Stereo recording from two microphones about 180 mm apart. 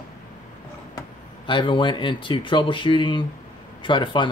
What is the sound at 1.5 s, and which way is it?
Speech, 25° left (ahead or behind).